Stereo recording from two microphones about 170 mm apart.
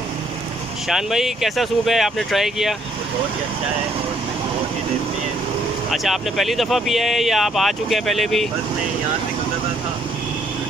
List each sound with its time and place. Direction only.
0.8 s speech: centre (ahead or behind)
5.9 s speech: centre (ahead or behind)